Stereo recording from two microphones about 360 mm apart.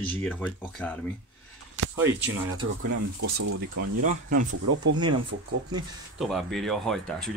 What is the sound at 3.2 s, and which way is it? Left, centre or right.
Speech, right.